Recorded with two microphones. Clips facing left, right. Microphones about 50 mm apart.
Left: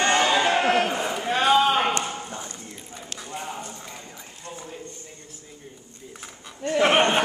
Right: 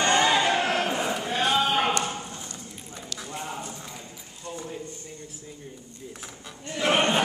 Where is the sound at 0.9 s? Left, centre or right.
Centre.